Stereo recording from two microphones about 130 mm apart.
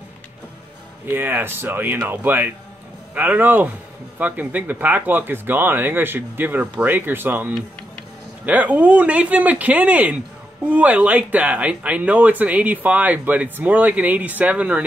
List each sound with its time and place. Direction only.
1.0 s speech: 15° right (ahead or behind)